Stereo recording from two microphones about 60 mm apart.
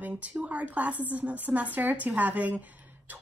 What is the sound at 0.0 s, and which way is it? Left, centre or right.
A woman's voice, right.